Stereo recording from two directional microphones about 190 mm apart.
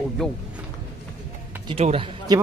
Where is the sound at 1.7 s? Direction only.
30° right (ahead or behind).